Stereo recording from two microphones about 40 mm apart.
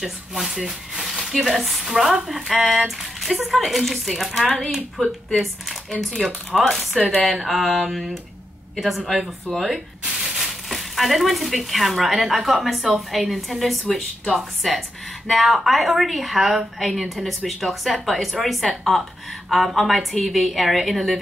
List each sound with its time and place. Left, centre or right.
0.0 s a woman's voice: centre
3.0 s a sound: centre
3.5 s a woman's voice: centre
10.1 s a woman's voice: centre